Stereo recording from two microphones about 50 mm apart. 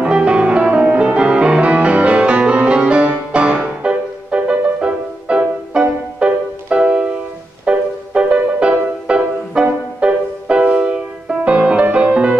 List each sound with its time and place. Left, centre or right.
0.0 s music: right